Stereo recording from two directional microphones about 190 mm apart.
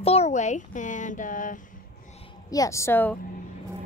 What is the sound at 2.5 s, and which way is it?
Speech, 15° left (ahead or behind).